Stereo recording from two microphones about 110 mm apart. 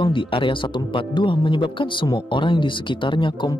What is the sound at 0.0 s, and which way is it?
Speech, 50° left (ahead or behind).